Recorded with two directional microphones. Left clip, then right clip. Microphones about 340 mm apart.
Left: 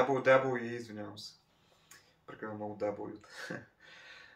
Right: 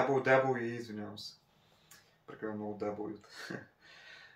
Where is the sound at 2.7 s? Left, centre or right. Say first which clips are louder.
Left 2 dB; centre.